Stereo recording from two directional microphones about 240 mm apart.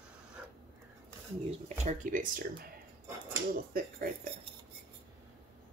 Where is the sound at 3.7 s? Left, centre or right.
Right.